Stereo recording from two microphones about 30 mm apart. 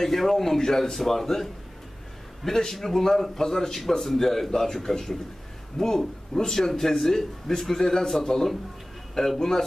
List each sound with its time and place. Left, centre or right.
0.0 s speech: centre
0.6 s speech: centre
0.9 s speech: centre
2.6 s speech: centre